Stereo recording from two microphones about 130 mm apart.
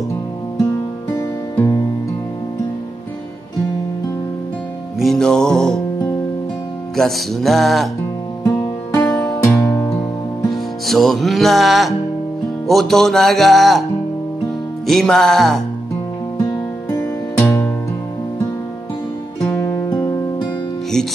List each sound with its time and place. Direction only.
1.1 s music: 25° left (ahead or behind)
4.9 s music: centre (ahead or behind)
7.0 s speech: centre (ahead or behind)
9.0 s music: 5° left (ahead or behind)
9.5 s music: 15° left (ahead or behind)
10.5 s music: centre (ahead or behind)
12.6 s speech: centre (ahead or behind)
14.9 s speech: centre (ahead or behind)
17.4 s music: 20° left (ahead or behind)